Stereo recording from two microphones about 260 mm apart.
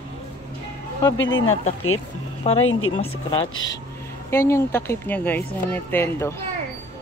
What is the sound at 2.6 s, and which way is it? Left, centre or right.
Speech, left.